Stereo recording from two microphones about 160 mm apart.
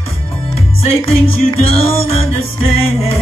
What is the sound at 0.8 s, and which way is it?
Music, 40° left (ahead or behind).